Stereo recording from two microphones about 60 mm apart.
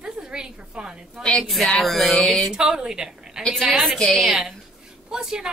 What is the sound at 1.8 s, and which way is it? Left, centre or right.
Speech, centre.